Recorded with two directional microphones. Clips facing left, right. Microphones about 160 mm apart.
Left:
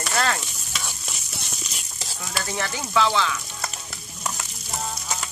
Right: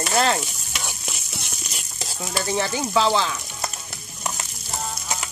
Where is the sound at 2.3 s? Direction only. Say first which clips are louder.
Right 5 dB; 25° right (ahead or behind).